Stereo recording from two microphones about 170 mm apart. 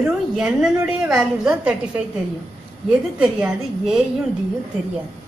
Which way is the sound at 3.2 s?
5° right (ahead or behind).